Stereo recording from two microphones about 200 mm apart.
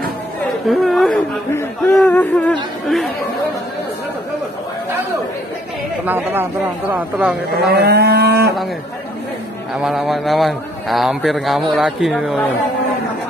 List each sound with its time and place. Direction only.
0.7 s speech: centre (ahead or behind)
1.5 s a man's voice: 10° left (ahead or behind)
6.0 s speech: 10° right (ahead or behind)
7.6 s livestock: 50° right (ahead or behind)
9.8 s a man's voice: centre (ahead or behind)